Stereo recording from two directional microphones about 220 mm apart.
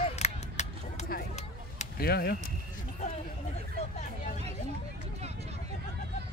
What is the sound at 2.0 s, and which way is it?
Speech, 45° left (ahead or behind).